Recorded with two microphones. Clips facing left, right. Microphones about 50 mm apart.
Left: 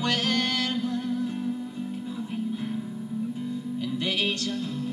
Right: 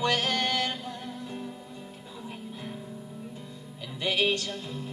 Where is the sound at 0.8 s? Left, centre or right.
Centre.